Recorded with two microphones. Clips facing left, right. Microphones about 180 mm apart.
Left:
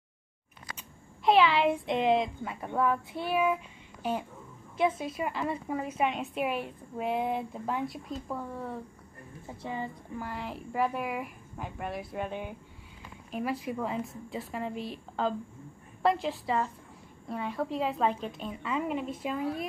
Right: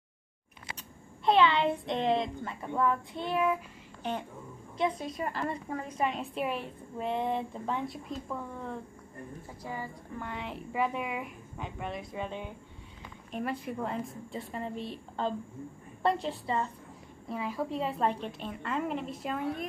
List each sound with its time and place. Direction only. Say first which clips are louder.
1.2 s a woman's voice: left 1 dB; centre (ahead or behind)
4.7 s a woman's voice: left 3 dB; 5° left (ahead or behind)
9.5 s speech: left 4 dB; 25° left (ahead or behind)
10.1 s a woman's voice: even; centre (ahead or behind)